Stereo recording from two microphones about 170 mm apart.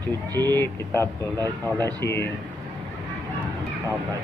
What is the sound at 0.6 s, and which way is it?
Speech, 15° left (ahead or behind).